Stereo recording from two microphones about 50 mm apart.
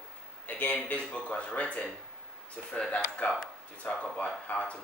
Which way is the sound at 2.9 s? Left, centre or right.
Left.